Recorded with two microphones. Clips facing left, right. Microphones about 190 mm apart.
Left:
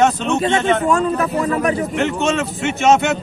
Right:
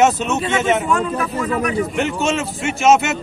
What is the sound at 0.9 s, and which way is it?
Speech, 40° left (ahead or behind).